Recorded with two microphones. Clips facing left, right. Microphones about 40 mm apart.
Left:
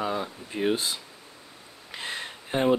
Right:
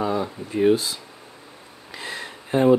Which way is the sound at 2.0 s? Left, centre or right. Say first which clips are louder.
Right 2 dB; left.